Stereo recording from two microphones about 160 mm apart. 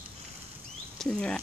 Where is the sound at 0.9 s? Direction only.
5° left (ahead or behind).